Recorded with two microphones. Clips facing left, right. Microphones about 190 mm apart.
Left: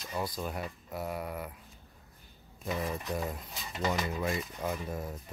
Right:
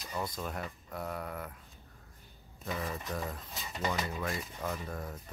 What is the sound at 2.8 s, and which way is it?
Speech, 10° left (ahead or behind).